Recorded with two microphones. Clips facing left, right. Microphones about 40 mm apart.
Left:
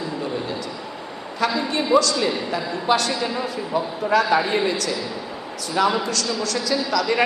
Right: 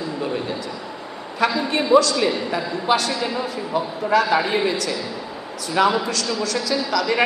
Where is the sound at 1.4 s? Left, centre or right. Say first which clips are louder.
Right 2 dB; centre.